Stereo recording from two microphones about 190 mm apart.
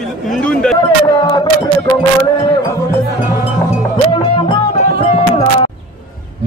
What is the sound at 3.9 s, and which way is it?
Music, 25° left (ahead or behind).